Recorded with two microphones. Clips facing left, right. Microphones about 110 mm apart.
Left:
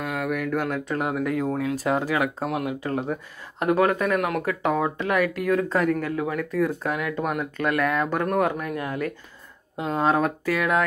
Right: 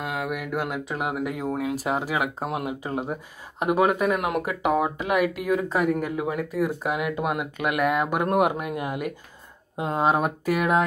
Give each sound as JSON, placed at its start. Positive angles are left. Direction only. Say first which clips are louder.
{"t": 0.0, "sound": "speech", "louder": "left 2 dB", "side_deg": -15}